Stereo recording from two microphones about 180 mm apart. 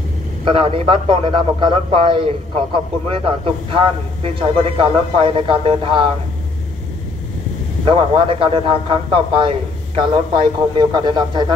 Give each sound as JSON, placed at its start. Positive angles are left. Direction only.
{"t": 0.5, "sound": "a man's voice", "side_deg": -30}
{"t": 7.8, "sound": "a man's voice", "side_deg": -30}